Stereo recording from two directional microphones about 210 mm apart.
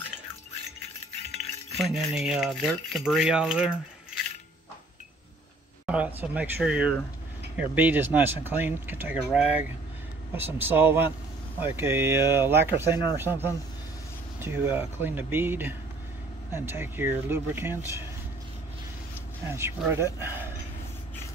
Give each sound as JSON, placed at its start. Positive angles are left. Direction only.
{"t": 1.4, "sound": "speech", "side_deg": 0}
{"t": 5.9, "sound": "speech", "side_deg": -5}
{"t": 19.4, "sound": "speech", "side_deg": -10}